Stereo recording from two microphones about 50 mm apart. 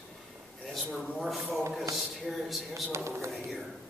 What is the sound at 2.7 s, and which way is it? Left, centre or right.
Speech, right.